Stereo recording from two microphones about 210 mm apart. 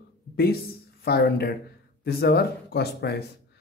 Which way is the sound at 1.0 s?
45° left (ahead or behind).